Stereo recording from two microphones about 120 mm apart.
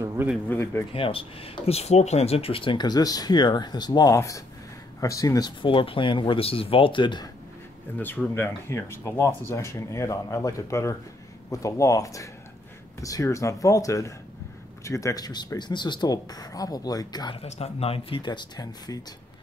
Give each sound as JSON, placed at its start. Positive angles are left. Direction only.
{"t": 0.0, "sound": "a sound", "side_deg": -20}
{"t": 0.5, "sound": "speech", "side_deg": 20}
{"t": 0.9, "sound": "speech", "side_deg": 50}
{"t": 5.6, "sound": "speech", "side_deg": 45}
{"t": 8.0, "sound": "speech", "side_deg": 15}
{"t": 17.4, "sound": "speech", "side_deg": 60}